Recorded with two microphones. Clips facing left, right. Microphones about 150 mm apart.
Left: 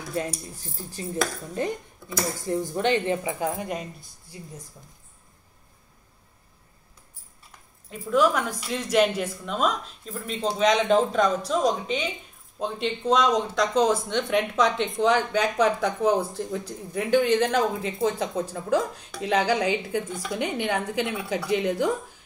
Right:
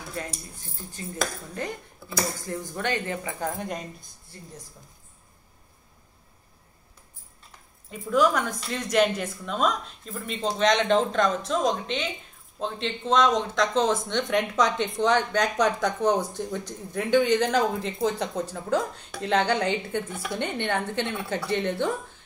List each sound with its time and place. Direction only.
0.1 s speech: 30° left (ahead or behind)
2.4 s speech: 20° left (ahead or behind)
7.9 s a woman's voice: centre (ahead or behind)
20.1 s a woman's voice: 5° right (ahead or behind)
20.3 s a woman's voice: 5° left (ahead or behind)